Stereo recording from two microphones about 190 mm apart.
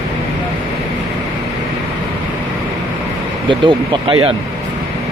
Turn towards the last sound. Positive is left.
turn(degrees=-25)  # may be behind; listen again after turning